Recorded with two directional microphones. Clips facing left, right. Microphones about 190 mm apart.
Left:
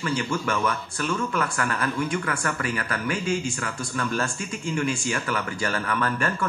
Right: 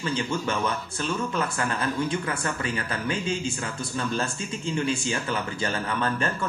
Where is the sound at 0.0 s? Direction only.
20° right (ahead or behind).